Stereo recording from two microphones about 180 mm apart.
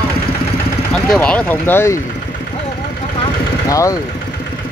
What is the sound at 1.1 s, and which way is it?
Speech, 5° left (ahead or behind).